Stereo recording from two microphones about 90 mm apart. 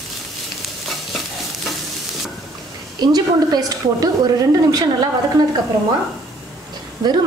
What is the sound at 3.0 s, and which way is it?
A woman's voice, 45° right (ahead or behind).